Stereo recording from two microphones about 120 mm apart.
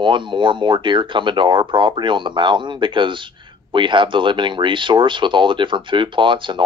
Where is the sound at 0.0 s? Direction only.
40° right (ahead or behind).